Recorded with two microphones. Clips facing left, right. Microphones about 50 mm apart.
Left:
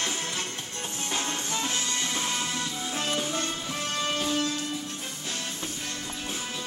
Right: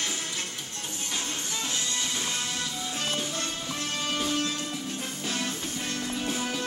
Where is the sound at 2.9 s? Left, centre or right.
Centre.